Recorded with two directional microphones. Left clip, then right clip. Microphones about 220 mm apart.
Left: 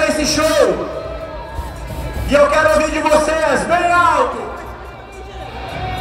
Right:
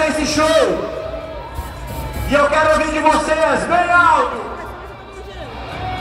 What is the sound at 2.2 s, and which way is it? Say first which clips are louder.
Music: left 2 dB; 55° left (ahead or behind).